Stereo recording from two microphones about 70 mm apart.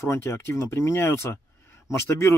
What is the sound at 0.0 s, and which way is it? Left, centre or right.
Speech, left.